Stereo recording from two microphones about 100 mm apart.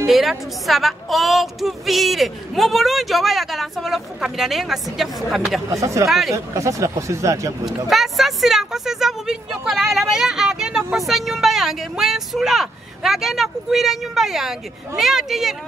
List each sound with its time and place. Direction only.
0.0 s speech: 5° right (ahead or behind)
5.7 s speech: 30° right (ahead or behind)
6.0 s speech: 5° right (ahead or behind)
6.3 s speech: 30° right (ahead or behind)
7.6 s speech: centre (ahead or behind)